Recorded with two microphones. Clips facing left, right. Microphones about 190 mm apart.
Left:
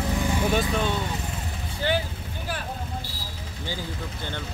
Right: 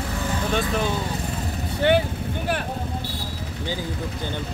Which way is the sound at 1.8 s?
60° right (ahead or behind).